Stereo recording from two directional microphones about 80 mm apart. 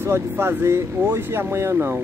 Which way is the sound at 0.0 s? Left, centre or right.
Right.